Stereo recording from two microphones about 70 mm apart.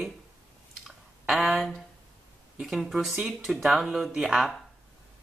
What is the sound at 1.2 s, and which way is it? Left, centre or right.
Speech, centre.